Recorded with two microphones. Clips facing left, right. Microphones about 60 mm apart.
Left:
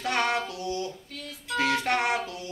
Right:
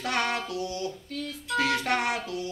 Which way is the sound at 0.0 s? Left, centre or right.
Left.